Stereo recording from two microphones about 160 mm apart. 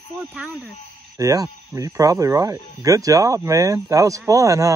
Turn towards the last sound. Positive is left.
turn(degrees=-20)  # may be behind; listen again after turning